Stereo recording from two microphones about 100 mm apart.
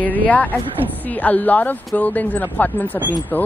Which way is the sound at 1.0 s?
15° left (ahead or behind).